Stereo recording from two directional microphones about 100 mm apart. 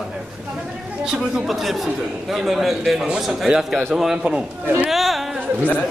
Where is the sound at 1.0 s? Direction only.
5° right (ahead or behind).